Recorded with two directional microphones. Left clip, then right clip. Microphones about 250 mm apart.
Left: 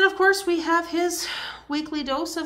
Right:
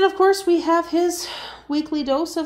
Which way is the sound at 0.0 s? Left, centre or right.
Centre.